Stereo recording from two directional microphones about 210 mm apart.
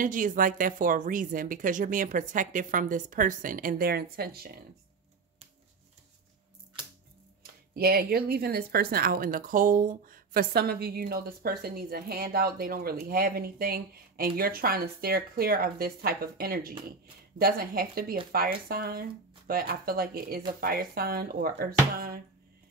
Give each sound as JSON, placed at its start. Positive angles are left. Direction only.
{"t": 0.0, "sound": "speech", "side_deg": -40}
{"t": 7.7, "sound": "speech", "side_deg": -45}